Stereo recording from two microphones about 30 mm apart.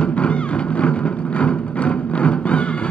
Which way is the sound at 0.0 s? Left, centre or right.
Left.